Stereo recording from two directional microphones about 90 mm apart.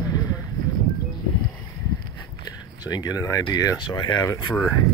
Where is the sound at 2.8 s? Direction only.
50° left (ahead or behind).